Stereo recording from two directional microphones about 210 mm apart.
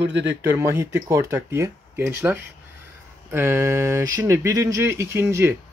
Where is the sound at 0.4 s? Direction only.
10° right (ahead or behind).